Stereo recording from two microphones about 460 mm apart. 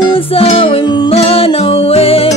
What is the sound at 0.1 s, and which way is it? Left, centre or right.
Music, centre.